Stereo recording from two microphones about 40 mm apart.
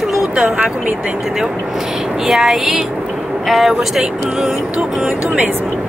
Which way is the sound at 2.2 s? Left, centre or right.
Centre.